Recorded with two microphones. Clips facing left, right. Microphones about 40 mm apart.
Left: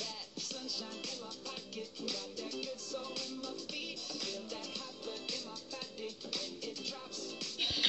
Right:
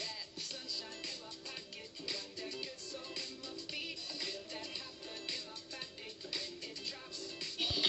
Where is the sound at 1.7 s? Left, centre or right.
Right.